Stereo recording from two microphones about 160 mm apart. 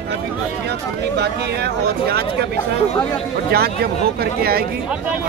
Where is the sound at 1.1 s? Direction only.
90° right.